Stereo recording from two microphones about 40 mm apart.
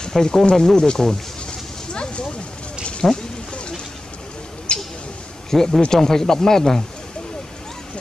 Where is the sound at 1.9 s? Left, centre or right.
Left.